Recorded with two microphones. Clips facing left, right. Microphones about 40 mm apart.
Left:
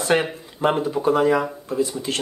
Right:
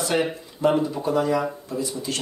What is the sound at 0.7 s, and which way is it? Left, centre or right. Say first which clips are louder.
Speech: left 1 dB; left.